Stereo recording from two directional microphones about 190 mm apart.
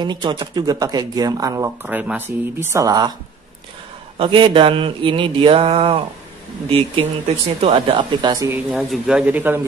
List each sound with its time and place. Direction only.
0.0 s speech: 25° right (ahead or behind)
4.2 s speech: 25° right (ahead or behind)
8.6 s a man's voice: centre (ahead or behind)